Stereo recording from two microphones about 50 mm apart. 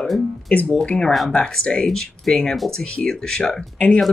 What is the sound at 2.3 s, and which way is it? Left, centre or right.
Speech, centre.